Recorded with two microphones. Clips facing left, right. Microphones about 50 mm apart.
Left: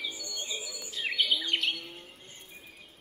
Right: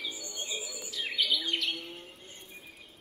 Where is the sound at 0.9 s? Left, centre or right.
Left.